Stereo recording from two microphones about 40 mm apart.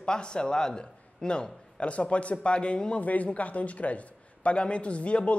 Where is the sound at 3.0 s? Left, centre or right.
Left.